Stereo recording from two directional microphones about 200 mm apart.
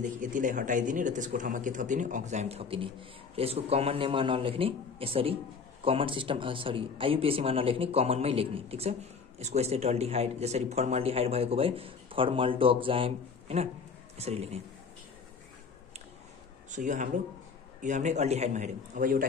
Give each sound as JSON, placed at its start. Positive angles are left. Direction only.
{"t": 0.2, "sound": "a man's voice", "side_deg": -40}
{"t": 16.7, "sound": "a man's voice", "side_deg": -40}